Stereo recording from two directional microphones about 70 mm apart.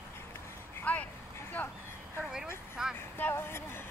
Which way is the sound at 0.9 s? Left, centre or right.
Centre.